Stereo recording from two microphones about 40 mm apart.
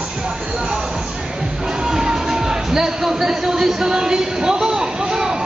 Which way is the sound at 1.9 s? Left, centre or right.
Centre.